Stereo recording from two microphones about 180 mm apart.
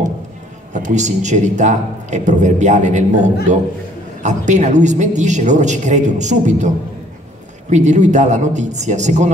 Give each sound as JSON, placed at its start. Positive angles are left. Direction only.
{"t": 0.7, "sound": "a man's voice", "side_deg": -40}
{"t": 7.7, "sound": "a man's voice", "side_deg": -40}